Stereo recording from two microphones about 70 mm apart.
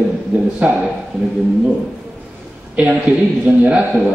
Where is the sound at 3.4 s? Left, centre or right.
Centre.